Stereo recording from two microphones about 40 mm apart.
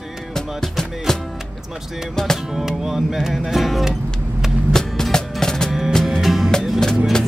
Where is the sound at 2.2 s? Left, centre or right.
Centre.